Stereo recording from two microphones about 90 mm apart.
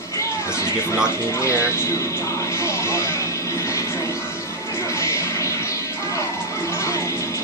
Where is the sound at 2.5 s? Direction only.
30° left (ahead or behind).